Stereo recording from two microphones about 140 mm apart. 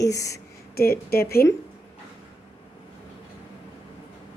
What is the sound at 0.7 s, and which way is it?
Speech, 90° left.